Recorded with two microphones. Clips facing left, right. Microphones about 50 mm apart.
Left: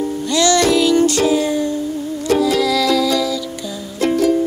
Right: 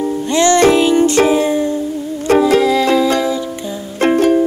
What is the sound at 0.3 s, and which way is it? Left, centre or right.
Music, right.